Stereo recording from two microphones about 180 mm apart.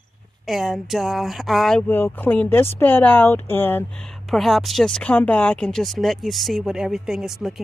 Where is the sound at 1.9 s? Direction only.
10° left (ahead or behind).